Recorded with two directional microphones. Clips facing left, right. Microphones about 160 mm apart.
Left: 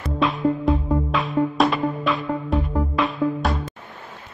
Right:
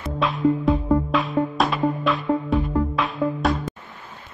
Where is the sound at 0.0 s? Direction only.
Centre (ahead or behind).